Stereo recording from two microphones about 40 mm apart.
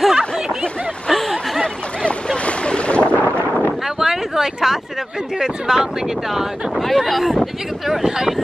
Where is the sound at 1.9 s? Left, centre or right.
Left.